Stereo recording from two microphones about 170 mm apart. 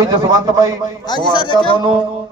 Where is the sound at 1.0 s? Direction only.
25° left (ahead or behind).